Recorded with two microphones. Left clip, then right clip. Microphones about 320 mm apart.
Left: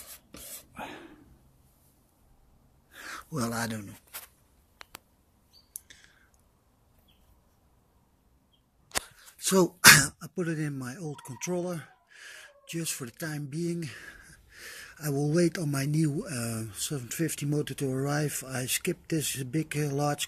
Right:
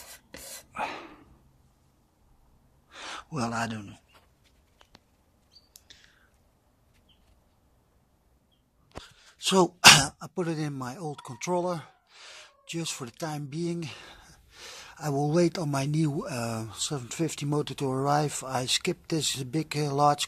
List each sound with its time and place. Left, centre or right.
0.7 s gasp: right
3.2 s speech: centre
5.7 s a sound: centre
9.0 s speech: centre